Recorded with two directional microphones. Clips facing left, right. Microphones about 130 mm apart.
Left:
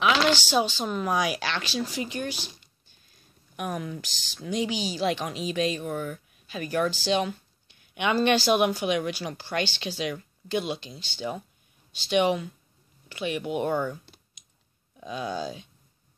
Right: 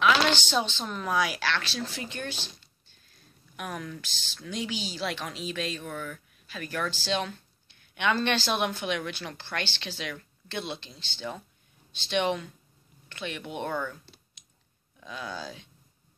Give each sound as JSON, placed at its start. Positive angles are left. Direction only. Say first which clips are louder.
{"t": 0.3, "sound": "speech", "louder": "left 4 dB", "side_deg": 10}
{"t": 15.0, "sound": "speech", "louder": "left 6 dB", "side_deg": 20}